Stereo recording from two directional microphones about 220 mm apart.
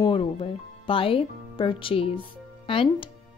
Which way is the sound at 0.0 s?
25° left (ahead or behind).